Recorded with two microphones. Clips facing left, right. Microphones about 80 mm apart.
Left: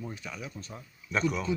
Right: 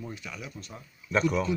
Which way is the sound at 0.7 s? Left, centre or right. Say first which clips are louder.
Right 5 dB; centre.